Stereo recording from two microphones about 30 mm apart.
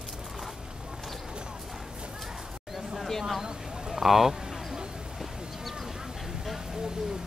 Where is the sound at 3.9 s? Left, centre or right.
Centre.